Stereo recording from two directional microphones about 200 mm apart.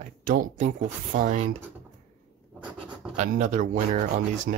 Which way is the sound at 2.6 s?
5° right (ahead or behind).